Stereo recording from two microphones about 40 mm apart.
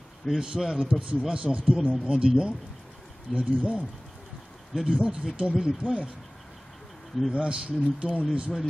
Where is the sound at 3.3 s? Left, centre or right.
Right.